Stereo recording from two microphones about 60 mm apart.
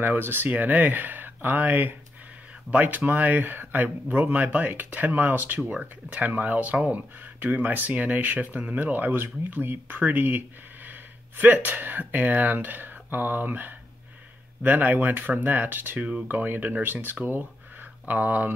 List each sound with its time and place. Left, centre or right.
0.0 s speech: right
5.7 s speech: right